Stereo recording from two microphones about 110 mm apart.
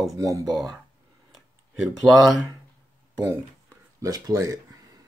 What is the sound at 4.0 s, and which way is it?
Speech, 35° right (ahead or behind).